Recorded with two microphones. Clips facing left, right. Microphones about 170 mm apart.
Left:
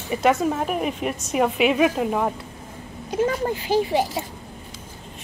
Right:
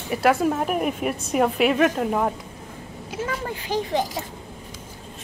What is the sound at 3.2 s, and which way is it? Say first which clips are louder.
Speech: left 5 dB; 30° left (ahead or behind).